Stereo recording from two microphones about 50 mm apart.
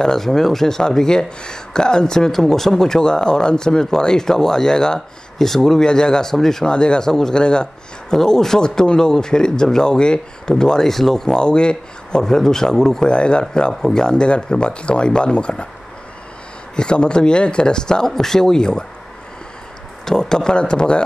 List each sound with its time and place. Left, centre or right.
0.0 s speech: centre
16.7 s speech: centre
20.1 s speech: centre